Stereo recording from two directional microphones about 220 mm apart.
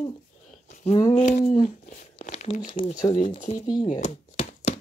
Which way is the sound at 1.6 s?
35° left (ahead or behind).